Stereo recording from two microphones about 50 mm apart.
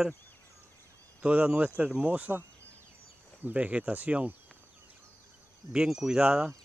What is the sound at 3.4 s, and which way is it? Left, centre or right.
Speech, right.